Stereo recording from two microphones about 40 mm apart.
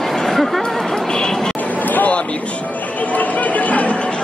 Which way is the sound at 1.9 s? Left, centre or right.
Left.